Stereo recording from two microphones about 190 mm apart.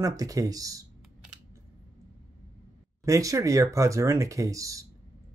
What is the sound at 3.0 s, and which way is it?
Speech, 15° right (ahead or behind).